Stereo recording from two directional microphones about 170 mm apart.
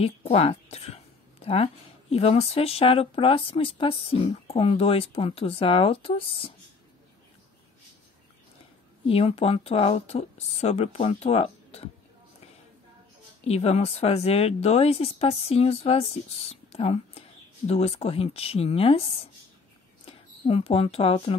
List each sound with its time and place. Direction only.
0.0 s a woman's voice: 35° left (ahead or behind)
9.0 s a woman's voice: 35° left (ahead or behind)
13.4 s a woman's voice: 40° left (ahead or behind)
20.1 s speech: 35° left (ahead or behind)